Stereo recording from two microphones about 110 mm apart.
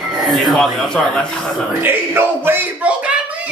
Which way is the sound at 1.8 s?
20° right (ahead or behind).